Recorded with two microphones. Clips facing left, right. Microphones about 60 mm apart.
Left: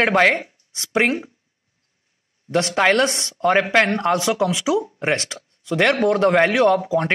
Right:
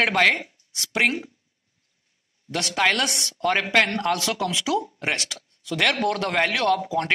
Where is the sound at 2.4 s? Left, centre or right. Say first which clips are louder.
Left 5 dB; left.